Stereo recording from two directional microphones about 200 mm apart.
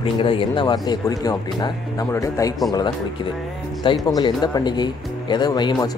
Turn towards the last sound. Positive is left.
turn(degrees=20)  # may be behind; listen again after turning